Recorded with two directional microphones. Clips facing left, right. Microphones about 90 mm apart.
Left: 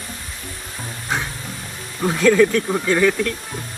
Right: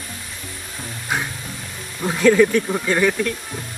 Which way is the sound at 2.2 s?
15° right (ahead or behind).